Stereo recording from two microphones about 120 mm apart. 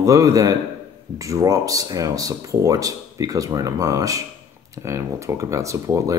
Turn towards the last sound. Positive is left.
turn(degrees=-25)  # may be behind; listen again after turning